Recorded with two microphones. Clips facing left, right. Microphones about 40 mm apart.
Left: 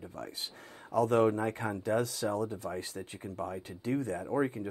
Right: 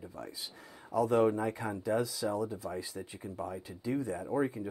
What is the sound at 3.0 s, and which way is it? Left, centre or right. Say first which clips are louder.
Speech: left 1 dB; left.